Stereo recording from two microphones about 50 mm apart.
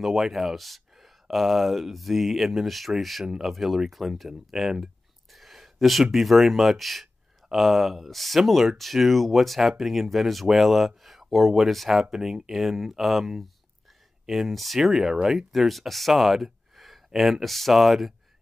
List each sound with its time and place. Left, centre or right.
0.0 s speech: centre
5.3 s a sound: centre
6.1 s speech: centre